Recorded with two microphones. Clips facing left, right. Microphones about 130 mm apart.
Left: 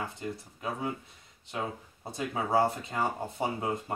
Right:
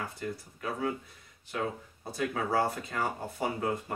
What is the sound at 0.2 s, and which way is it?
Speech, 20° left (ahead or behind).